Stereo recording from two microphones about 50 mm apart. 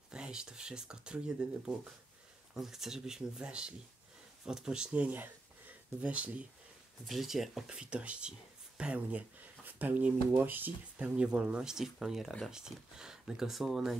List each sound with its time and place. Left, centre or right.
0.1 s speech: centre
2.5 s speech: centre
4.9 s speech: right
7.1 s speech: centre
7.7 s speech: centre
9.8 s speech: right
11.0 s speech: right
11.7 s speech: centre